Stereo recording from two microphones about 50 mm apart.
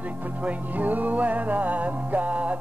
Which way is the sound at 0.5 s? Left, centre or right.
Right.